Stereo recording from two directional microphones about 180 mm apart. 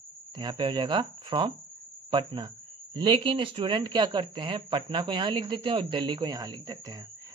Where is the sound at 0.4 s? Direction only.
25° right (ahead or behind).